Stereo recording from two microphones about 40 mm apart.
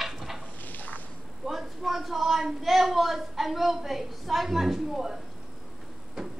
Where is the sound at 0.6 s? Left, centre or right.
Left.